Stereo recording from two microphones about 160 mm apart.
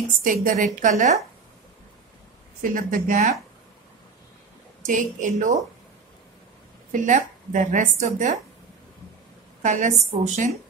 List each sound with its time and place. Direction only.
0.2 s a woman's voice: 60° right (ahead or behind)
2.6 s speech: 60° right (ahead or behind)
4.8 s a woman's voice: 50° right (ahead or behind)
6.9 s a woman's voice: 50° right (ahead or behind)
9.6 s a woman's voice: 50° right (ahead or behind)